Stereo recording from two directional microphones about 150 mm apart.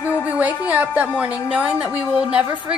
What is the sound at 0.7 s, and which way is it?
A woman's voice, 10° right (ahead or behind).